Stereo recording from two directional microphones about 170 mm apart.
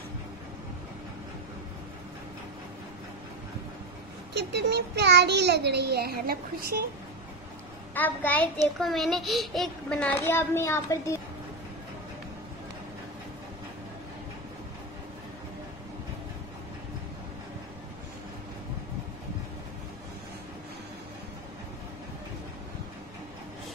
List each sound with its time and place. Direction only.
4.3 s a child's voice: 75° right (ahead or behind); by 6.9 s 60° right (ahead or behind)
7.9 s a child's voice: 10° left (ahead or behind)